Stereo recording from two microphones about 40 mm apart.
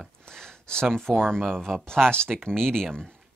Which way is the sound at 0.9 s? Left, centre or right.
Centre.